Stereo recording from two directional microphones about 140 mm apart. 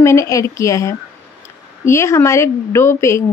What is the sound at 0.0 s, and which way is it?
Speech, 20° left (ahead or behind).